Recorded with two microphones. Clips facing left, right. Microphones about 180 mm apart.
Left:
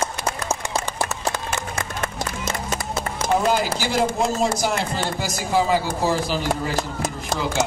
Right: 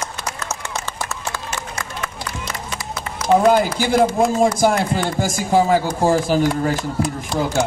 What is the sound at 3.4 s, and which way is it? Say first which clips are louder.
Speech: right 6 dB; 55° right (ahead or behind).